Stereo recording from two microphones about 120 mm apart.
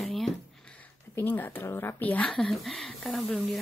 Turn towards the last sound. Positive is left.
turn(degrees=5)  # may be behind; listen again after turning